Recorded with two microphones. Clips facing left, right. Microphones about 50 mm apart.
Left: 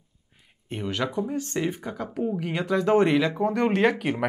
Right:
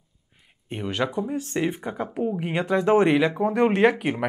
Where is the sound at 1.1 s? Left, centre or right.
Centre.